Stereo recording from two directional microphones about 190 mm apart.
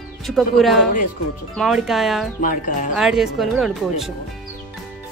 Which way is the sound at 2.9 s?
5° right (ahead or behind).